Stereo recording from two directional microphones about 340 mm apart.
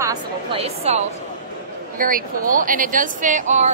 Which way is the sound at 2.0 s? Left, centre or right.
Right.